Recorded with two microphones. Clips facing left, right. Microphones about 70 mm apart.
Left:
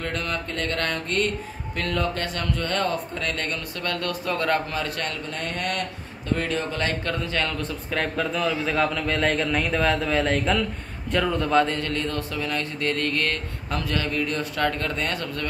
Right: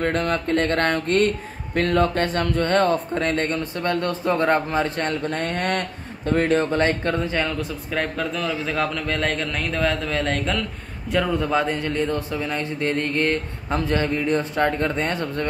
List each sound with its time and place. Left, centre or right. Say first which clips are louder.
0.0 s speech: right 7 dB; right
5.3 s speech: right 5 dB; right
7.4 s a man's voice: right 2 dB; centre; by 15.4 s right